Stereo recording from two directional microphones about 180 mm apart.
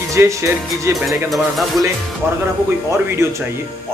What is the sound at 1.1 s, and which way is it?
Speech, centre (ahead or behind).